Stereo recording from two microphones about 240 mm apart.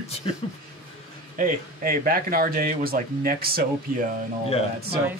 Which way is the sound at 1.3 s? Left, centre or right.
Right.